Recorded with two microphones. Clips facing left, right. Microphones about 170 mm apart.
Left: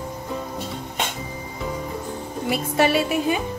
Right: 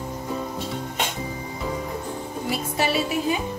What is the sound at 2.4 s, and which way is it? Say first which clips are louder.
Speech: left 5 dB; 60° left (ahead or behind).